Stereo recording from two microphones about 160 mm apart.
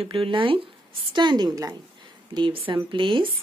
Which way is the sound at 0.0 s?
35° right (ahead or behind).